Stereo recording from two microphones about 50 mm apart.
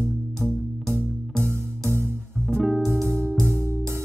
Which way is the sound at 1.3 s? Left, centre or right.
Right.